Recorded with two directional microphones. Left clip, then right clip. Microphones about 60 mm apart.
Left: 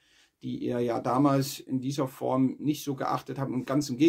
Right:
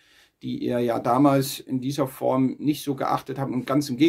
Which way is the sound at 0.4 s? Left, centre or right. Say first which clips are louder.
Right 5 dB; right.